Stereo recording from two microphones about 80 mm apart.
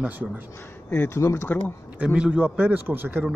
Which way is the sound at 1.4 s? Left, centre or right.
Centre.